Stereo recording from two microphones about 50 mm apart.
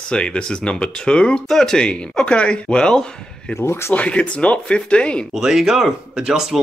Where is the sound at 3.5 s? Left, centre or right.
Left.